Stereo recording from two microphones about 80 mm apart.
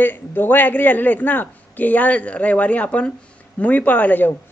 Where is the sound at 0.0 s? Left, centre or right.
Left.